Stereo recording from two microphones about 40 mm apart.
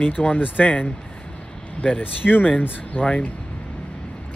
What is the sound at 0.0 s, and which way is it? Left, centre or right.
Speech, left.